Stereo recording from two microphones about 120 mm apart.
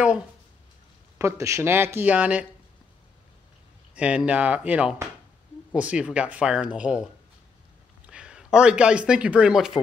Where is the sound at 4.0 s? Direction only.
10° right (ahead or behind).